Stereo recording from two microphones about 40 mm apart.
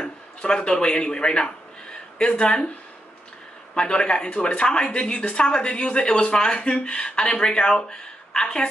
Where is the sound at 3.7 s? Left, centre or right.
Left.